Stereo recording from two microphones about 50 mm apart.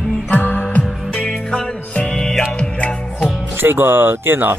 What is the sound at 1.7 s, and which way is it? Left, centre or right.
Music, left.